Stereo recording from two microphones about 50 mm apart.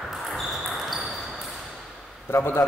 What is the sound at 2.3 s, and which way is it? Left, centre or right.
Speech, left.